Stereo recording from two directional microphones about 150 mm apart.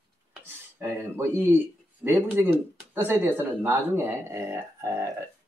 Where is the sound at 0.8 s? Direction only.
15° right (ahead or behind).